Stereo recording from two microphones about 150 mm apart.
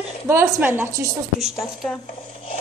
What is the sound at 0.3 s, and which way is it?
Speech, 15° right (ahead or behind).